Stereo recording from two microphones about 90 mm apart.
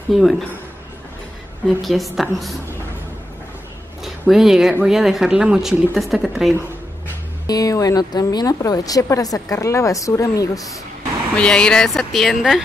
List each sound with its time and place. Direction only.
0.1 s speech: centre (ahead or behind)
1.7 s speech: centre (ahead or behind)
4.0 s speech: 5° right (ahead or behind)
7.4 s speech: 45° left (ahead or behind)
11.3 s speech: 10° left (ahead or behind)